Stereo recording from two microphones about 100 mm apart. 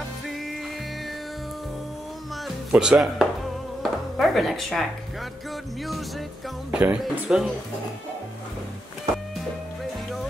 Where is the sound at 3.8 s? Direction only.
Centre (ahead or behind).